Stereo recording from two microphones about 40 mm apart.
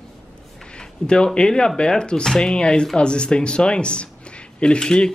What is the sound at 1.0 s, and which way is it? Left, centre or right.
Speech, left.